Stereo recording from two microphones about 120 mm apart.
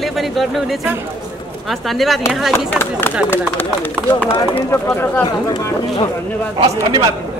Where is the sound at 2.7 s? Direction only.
15° left (ahead or behind).